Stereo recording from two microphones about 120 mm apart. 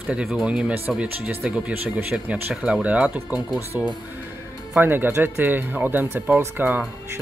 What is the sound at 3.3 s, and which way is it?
Speech, 35° left (ahead or behind).